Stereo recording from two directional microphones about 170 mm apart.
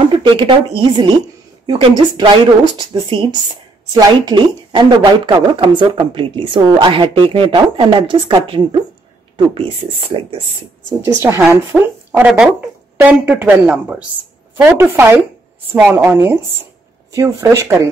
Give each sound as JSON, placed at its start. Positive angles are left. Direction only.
{"t": 0.2, "sound": "speech", "side_deg": -30}
{"t": 11.1, "sound": "speech", "side_deg": -15}